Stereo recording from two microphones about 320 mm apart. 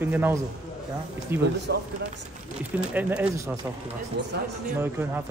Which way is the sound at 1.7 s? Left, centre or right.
Right.